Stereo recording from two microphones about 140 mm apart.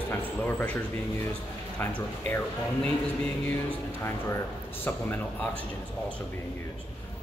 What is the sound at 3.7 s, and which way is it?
Speech, 15° left (ahead or behind).